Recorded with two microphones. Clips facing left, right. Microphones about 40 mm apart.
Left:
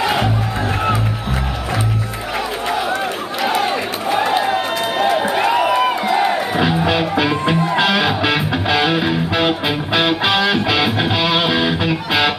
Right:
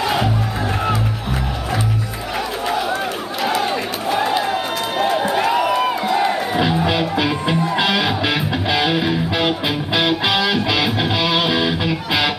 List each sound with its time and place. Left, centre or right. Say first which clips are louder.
0.0 s music: left 2 dB; centre
3.4 s run: left 2 dB; centre
5.3 s music: left 2 dB; centre